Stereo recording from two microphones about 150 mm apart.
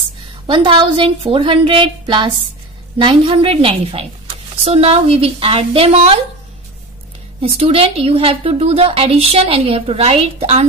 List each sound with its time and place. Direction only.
0.5 s a woman's voice: 30° right (ahead or behind)
7.5 s a woman's voice: 40° right (ahead or behind)